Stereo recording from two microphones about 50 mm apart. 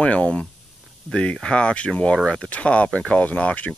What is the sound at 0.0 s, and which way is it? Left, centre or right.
Speech, left.